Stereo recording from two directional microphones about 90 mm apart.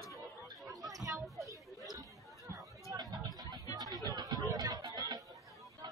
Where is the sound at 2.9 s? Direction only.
40° right (ahead or behind).